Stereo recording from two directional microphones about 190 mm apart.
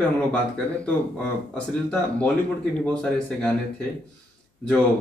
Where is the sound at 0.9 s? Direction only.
5° left (ahead or behind).